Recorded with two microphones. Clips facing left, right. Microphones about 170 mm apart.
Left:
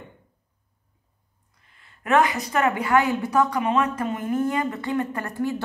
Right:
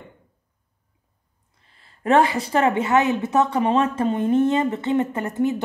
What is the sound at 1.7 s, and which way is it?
A woman's voice, 30° right (ahead or behind).